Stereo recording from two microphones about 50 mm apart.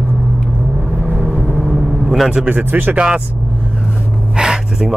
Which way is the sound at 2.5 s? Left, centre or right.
Right.